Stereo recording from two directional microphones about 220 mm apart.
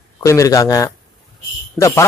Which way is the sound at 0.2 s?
15° left (ahead or behind).